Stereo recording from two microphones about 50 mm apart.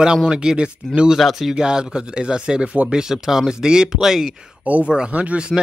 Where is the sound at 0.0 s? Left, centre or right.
Centre.